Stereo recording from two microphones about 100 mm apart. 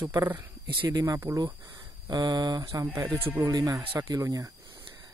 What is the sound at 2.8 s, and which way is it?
Speech, 20° right (ahead or behind).